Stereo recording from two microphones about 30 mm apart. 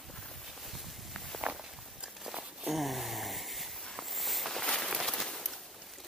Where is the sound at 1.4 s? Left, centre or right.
Right.